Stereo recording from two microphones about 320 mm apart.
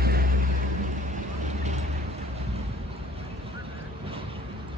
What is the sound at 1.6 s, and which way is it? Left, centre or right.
Vehicle, right.